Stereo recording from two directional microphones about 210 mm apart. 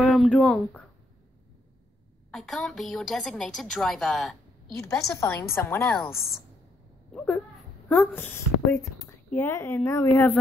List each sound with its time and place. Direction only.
0.1 s speech: centre (ahead or behind)
2.3 s a woman's voice: 5° left (ahead or behind)
4.7 s a woman's voice: 15° left (ahead or behind)
6.1 s a woman's voice: 45° left (ahead or behind)
7.1 s a woman's voice: 5° left (ahead or behind)